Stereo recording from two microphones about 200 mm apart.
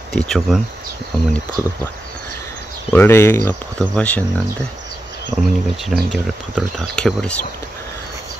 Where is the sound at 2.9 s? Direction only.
10° left (ahead or behind).